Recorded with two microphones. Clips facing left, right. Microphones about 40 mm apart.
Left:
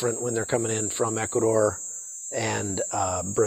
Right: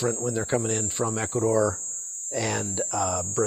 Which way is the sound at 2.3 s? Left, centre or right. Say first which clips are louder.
Left 1 dB; centre.